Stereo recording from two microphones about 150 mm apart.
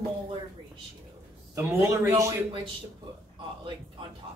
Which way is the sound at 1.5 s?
20° right (ahead or behind).